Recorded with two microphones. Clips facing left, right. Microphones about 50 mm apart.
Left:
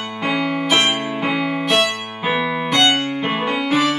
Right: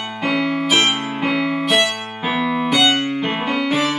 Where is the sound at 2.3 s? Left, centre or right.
Centre.